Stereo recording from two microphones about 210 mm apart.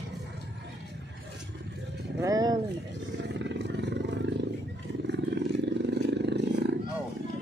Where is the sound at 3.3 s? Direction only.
55° right (ahead or behind).